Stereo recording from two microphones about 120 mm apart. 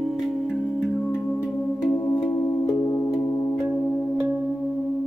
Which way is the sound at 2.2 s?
25° left (ahead or behind).